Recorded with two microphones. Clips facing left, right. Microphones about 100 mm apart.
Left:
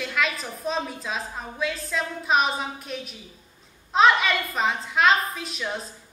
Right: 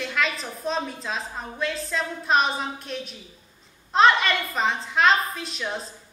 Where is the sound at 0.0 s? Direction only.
Centre (ahead or behind).